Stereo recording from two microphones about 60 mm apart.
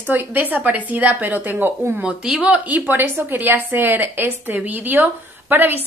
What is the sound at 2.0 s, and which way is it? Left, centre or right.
A woman's voice, centre.